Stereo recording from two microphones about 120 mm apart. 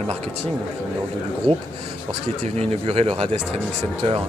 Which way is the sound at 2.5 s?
55° right (ahead or behind).